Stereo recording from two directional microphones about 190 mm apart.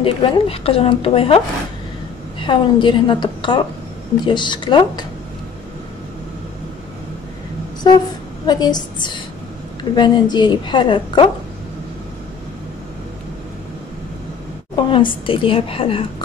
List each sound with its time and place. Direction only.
0.0 s a woman's voice: 30° left (ahead or behind)
2.4 s a woman's voice: 25° left (ahead or behind)
7.8 s a woman's voice: 25° left (ahead or behind)
14.8 s a woman's voice: 25° left (ahead or behind)